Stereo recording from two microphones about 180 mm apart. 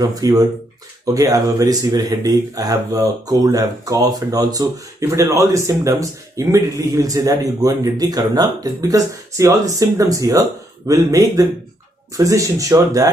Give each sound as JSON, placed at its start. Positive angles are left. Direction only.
{"t": 0.0, "sound": "speech", "side_deg": -20}